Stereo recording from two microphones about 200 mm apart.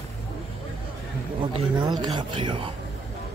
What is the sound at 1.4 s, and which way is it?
Speech, 25° right (ahead or behind).